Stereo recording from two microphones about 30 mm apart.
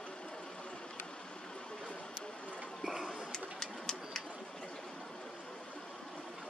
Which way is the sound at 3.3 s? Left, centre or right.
Centre.